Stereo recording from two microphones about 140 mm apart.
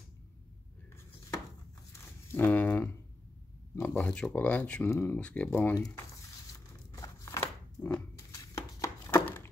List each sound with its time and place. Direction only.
2.3 s speech: 10° left (ahead or behind)
6.9 s biting: 20° left (ahead or behind)
8.3 s a sound: 20° left (ahead or behind)